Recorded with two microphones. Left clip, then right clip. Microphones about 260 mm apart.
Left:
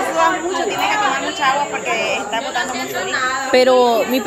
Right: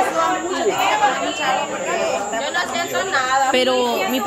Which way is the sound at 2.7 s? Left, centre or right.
Right.